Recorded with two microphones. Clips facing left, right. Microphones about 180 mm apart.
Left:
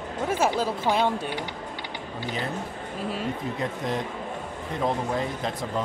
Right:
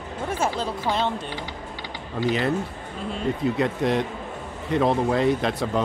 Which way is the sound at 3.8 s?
75° right (ahead or behind).